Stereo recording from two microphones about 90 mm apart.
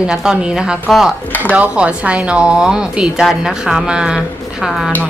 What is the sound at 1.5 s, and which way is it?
Speech, 15° right (ahead or behind).